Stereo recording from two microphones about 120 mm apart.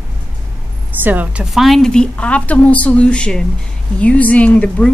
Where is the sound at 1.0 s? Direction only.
15° right (ahead or behind).